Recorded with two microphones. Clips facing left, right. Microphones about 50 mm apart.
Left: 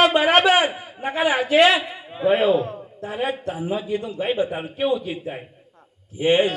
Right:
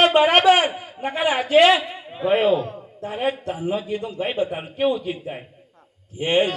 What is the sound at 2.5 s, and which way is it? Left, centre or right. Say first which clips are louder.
Speech: left 1 dB; left.